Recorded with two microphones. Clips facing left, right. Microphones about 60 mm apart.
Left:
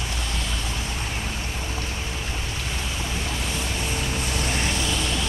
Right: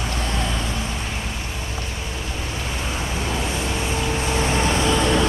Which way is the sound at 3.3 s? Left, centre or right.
Right.